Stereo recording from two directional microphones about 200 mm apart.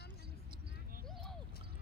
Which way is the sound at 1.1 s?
Centre (ahead or behind).